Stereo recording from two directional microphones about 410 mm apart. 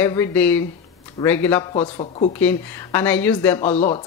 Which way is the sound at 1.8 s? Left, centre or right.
Centre.